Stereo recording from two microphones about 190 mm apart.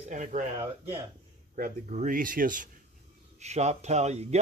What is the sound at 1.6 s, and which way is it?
Speech, 40° right (ahead or behind).